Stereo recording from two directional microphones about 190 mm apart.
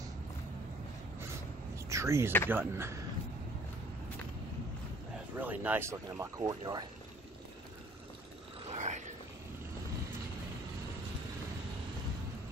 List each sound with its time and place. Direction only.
1.9 s speech: 15° right (ahead or behind)
5.4 s speech: 10° right (ahead or behind)
8.6 s wild animals: 40° right (ahead or behind)